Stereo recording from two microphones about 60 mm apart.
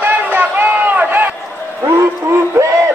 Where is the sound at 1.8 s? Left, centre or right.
Right.